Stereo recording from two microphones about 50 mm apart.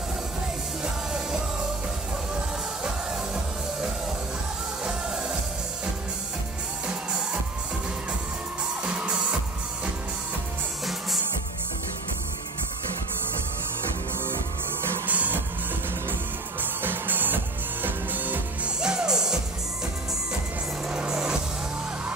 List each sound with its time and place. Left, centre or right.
6.9 s music: centre
15.0 s music: right
16.8 s music: right
18.8 s music: centre
20.9 s music: centre